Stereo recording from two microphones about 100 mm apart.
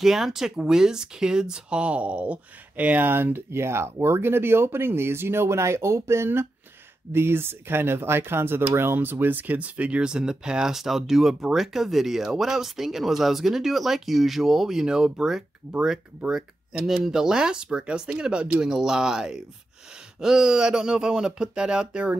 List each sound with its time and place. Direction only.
0.0 s speech: 5° right (ahead or behind)